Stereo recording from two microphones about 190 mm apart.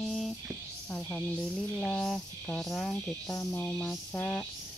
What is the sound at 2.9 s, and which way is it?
Music, 15° left (ahead or behind).